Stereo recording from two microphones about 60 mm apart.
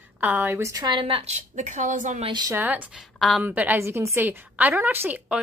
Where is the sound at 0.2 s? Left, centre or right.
Right.